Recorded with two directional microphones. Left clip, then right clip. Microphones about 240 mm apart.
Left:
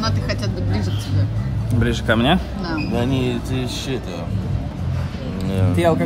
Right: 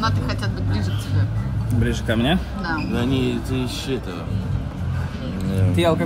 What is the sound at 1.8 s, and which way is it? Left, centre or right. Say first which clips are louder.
Speech: left 4 dB; centre.